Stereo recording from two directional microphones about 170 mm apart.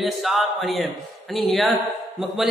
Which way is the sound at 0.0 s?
Centre (ahead or behind).